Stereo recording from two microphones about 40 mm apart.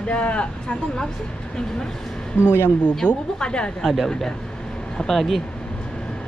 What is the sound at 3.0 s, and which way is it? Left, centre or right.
Speech, left.